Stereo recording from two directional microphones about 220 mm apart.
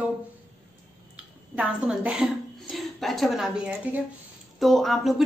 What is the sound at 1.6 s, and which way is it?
A woman's voice, 5° right (ahead or behind).